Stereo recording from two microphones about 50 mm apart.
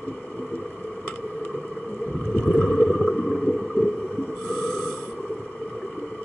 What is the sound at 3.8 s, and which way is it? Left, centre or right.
Heart sounds, left.